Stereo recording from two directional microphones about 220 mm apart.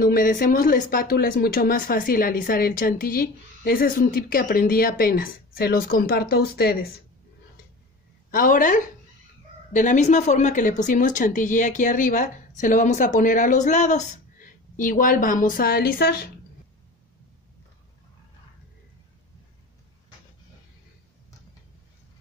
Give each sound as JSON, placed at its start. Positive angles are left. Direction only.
{"t": 0.0, "sound": "speech", "side_deg": 40}
{"t": 8.3, "sound": "speech", "side_deg": 40}